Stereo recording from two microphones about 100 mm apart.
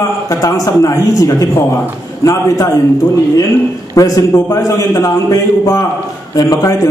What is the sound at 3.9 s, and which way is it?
A man's voice, 35° left (ahead or behind).